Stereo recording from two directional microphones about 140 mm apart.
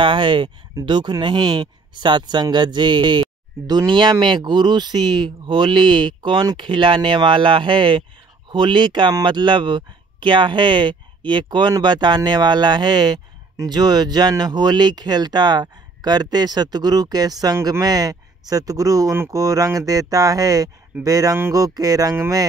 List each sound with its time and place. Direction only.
0.0 s speech: 35° right (ahead or behind); by 22.5 s 20° right (ahead or behind)